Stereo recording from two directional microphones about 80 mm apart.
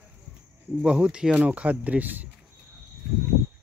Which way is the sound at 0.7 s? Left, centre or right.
Centre.